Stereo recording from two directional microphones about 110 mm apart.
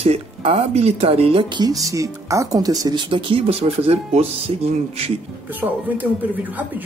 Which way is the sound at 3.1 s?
50° right (ahead or behind).